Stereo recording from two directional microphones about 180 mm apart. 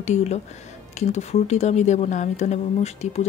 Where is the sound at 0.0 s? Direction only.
40° left (ahead or behind).